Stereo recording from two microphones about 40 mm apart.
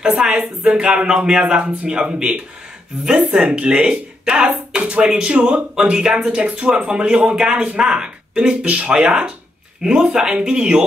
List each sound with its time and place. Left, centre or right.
0.0 s speech: centre